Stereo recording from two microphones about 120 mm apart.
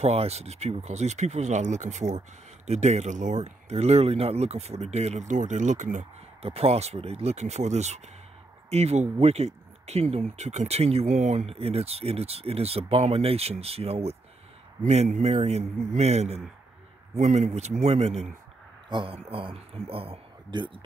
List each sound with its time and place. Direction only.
0.0 s speech: 60° right (ahead or behind); by 6.0 s 90° right
6.4 s speech: 55° right (ahead or behind)
14.8 s speech: 75° right (ahead or behind)
18.9 s speech: 45° right (ahead or behind)